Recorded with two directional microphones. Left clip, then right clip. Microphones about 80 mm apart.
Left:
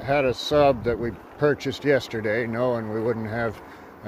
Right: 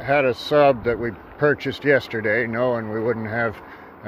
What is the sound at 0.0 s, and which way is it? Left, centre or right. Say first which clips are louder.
Speech: right 3 dB; left.